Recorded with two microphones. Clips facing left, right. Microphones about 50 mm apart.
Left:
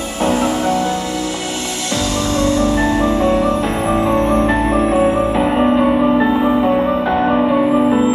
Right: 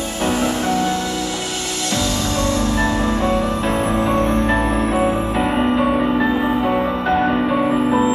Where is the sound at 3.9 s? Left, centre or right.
Left.